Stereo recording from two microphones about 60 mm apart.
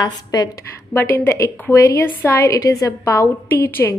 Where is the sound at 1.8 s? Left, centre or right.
Left.